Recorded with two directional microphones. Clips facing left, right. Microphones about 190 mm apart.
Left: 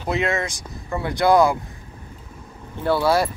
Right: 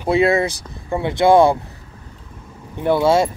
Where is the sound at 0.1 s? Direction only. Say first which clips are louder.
Right 7 dB; 30° right (ahead or behind).